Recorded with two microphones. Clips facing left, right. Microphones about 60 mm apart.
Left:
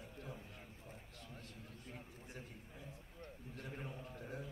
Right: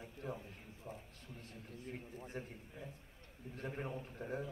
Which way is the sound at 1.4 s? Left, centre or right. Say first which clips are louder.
Right 4 dB; right.